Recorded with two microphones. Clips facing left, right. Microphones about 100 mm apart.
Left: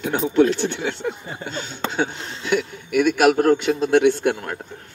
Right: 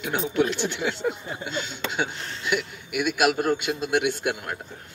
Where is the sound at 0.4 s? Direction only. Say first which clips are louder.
Left 7 dB; 10° right (ahead or behind).